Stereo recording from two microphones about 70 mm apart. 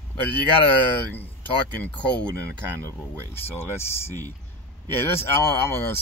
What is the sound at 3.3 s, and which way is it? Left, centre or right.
Speech, left.